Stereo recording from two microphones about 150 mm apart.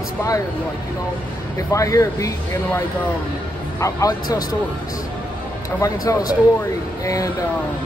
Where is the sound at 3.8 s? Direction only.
20° left (ahead or behind).